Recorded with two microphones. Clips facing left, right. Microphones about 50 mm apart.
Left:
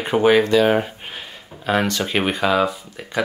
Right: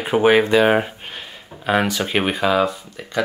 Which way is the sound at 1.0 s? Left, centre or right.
Centre.